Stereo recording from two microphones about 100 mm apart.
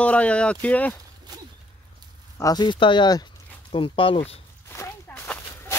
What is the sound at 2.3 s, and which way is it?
Speech, 40° left (ahead or behind).